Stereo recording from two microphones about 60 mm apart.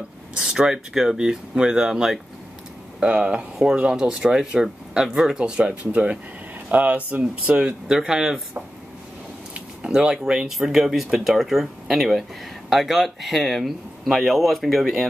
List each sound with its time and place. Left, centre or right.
0.4 s speech: centre
7.9 s speech: centre
9.5 s speech: centre